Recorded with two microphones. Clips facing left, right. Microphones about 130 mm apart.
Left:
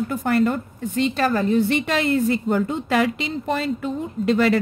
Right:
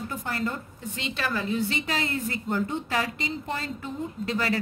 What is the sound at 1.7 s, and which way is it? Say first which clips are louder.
A woman's voice: left 9 dB; 70° left (ahead or behind).